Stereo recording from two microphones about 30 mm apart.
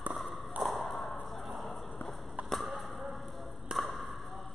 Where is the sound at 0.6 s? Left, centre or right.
Centre.